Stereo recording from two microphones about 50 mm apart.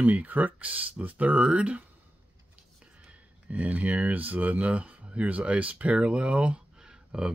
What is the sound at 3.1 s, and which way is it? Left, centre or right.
Speech, right.